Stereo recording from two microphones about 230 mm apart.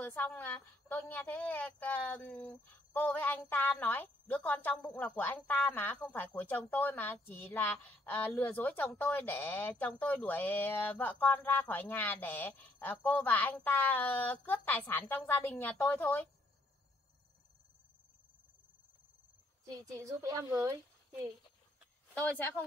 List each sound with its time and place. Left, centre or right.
0.0 s a woman's voice: centre
19.6 s a woman's voice: centre
22.1 s speech: centre